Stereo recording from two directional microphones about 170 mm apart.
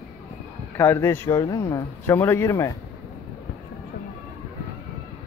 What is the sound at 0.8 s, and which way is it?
Speech, 15° left (ahead or behind).